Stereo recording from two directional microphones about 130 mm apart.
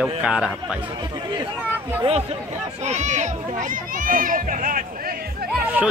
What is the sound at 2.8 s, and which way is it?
Speech, 65° right (ahead or behind).